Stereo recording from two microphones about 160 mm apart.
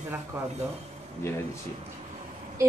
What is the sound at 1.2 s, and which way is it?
Speech, 15° left (ahead or behind).